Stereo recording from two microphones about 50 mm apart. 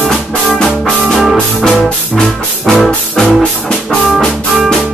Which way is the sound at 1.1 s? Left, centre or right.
Centre.